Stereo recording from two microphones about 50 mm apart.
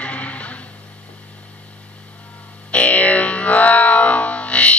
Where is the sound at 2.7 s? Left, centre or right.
Left.